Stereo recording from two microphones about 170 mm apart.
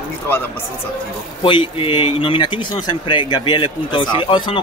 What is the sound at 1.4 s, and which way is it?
A man's voice, 30° left (ahead or behind).